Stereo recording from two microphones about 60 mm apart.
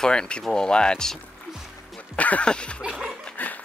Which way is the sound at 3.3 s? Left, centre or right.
Left.